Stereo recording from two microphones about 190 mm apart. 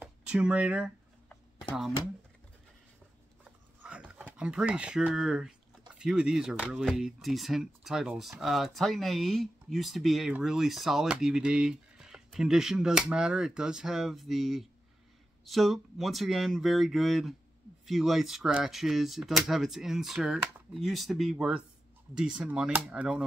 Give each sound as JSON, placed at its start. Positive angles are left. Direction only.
{"t": 0.0, "sound": "speech", "side_deg": -5}
{"t": 3.8, "sound": "speech", "side_deg": -5}